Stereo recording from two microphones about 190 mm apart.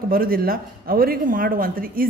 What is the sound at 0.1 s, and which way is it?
Speech, 50° right (ahead or behind).